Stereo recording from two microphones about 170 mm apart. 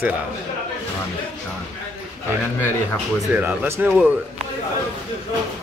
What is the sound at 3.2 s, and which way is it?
Speech, 10° right (ahead or behind).